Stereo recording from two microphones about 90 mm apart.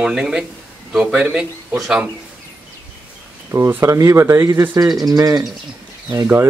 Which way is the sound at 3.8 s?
35° right (ahead or behind).